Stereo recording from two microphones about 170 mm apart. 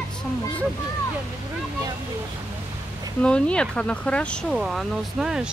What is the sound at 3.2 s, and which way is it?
Speech, 5° left (ahead or behind).